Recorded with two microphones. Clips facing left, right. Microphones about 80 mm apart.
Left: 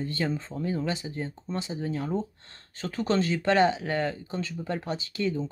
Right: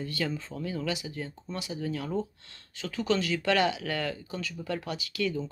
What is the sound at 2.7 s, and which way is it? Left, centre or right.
Speech, left.